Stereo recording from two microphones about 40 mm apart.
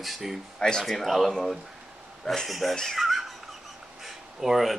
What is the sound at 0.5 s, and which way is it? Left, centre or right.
Speech, centre.